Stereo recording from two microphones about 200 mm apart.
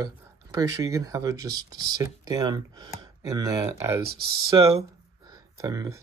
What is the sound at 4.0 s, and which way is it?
Speech, 50° right (ahead or behind).